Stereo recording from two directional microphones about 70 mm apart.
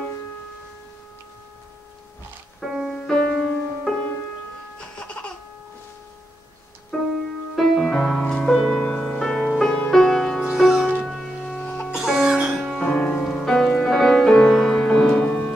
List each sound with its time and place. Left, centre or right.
2.6 s music: centre
6.9 s music: left
7.5 s music: centre
11.9 s music: centre
12.5 s music: centre
12.8 s music: centre